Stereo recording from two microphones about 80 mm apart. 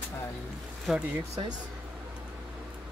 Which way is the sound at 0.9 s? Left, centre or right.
Centre.